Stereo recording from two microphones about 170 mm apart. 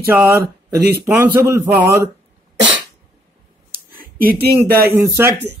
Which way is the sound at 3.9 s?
60° right (ahead or behind).